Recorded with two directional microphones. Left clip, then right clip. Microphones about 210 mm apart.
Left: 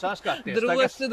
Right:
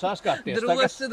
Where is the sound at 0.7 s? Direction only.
10° left (ahead or behind).